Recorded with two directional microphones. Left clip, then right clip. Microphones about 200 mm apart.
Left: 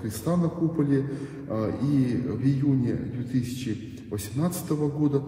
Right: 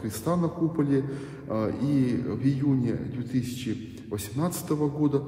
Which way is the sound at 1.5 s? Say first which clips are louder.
Even; 30° right (ahead or behind).